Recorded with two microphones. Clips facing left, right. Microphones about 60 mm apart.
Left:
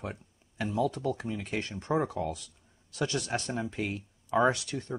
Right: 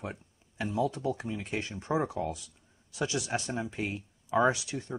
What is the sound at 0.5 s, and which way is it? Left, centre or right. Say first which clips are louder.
Speech: left 1 dB; centre.